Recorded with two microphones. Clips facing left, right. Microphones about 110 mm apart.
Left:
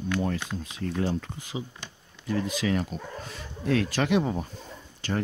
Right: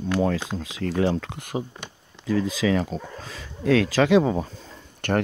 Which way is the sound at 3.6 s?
90° right.